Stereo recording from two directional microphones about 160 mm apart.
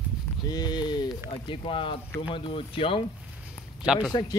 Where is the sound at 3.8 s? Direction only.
5° right (ahead or behind).